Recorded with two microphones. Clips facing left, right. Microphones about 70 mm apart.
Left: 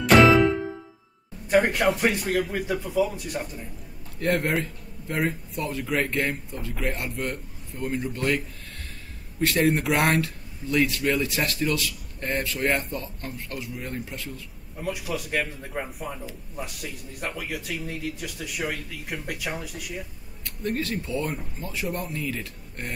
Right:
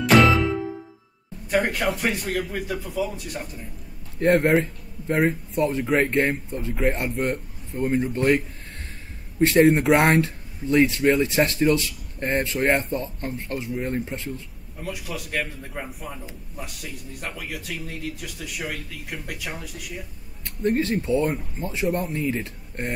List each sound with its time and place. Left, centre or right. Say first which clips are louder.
0.0 s music: left 1 dB; centre
1.5 s speech: left 2 dB; centre
4.2 s speech: right 6 dB; right
9.4 s speech: right 6 dB; right
14.8 s speech: left 2 dB; centre
20.4 s speech: right 6 dB; right